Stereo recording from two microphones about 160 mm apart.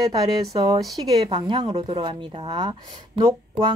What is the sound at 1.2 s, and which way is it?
A woman's voice, 30° right (ahead or behind).